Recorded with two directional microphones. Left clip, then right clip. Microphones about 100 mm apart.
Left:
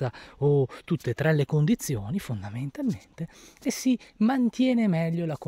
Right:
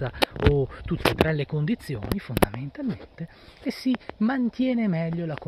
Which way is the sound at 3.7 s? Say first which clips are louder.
Even; 55° left (ahead or behind).